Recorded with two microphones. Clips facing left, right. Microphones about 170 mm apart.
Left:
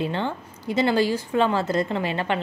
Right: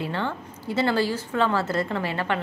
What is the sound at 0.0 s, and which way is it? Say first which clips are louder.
A woman's voice: left 2 dB; 20° left (ahead or behind).